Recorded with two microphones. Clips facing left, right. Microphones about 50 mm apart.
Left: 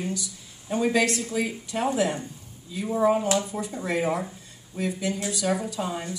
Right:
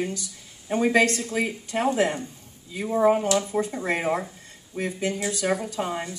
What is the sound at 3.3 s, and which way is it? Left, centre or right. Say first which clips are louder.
Speech: right 3 dB; right.